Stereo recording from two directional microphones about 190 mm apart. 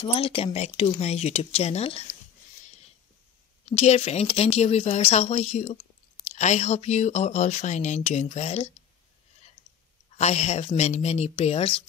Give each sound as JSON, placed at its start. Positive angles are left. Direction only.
{"t": 0.0, "sound": "speech", "side_deg": 30}
{"t": 3.6, "sound": "speech", "side_deg": 35}
{"t": 10.1, "sound": "speech", "side_deg": 35}